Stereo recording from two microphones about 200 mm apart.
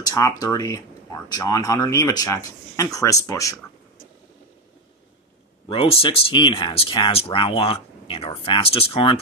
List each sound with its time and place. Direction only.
0.0 s speech: 15° left (ahead or behind)
5.7 s speech: 30° left (ahead or behind)